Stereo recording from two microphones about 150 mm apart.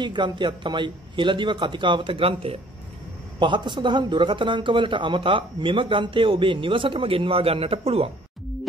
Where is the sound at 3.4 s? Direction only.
30° right (ahead or behind).